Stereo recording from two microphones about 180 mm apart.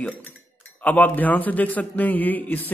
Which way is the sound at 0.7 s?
10° left (ahead or behind).